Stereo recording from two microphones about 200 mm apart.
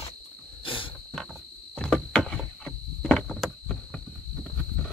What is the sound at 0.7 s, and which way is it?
Wild animals, 25° left (ahead or behind).